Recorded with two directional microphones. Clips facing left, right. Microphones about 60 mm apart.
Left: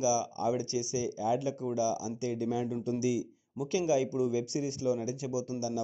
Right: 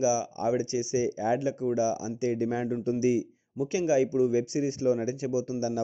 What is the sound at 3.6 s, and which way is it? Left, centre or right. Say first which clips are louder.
Speech: right 3 dB; right.